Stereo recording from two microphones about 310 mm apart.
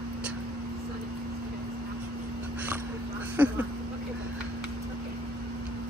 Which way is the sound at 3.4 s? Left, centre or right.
Centre.